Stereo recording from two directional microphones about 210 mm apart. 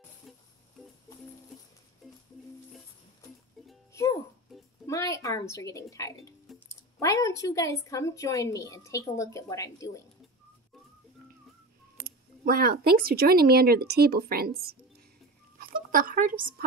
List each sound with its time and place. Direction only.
3.9 s music: 15° left (ahead or behind)
4.5 s a sound: centre (ahead or behind)
4.8 s a woman's voice: 15° left (ahead or behind)
6.5 s a sound: centre (ahead or behind)
7.0 s a woman's voice: 15° left (ahead or behind)
12.0 s a woman's voice: 45° right (ahead or behind)